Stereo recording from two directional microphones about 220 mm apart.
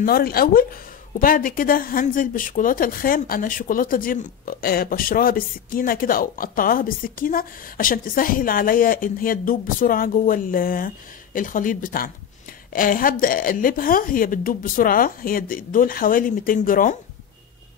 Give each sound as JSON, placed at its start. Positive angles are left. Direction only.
{"t": 0.0, "sound": "speech", "side_deg": 45}